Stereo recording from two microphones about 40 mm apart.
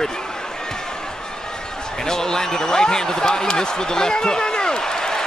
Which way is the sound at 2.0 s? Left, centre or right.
Centre.